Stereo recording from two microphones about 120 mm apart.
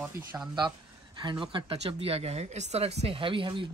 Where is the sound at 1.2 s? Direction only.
40° right (ahead or behind).